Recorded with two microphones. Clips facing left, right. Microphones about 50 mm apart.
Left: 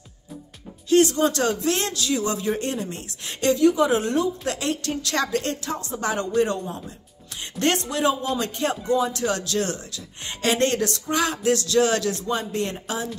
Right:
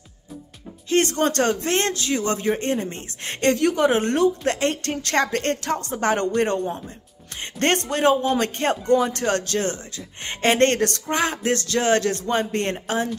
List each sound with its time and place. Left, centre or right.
0.8 s speech: right